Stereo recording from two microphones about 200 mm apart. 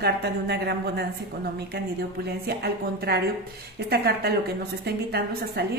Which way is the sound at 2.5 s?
55° right (ahead or behind).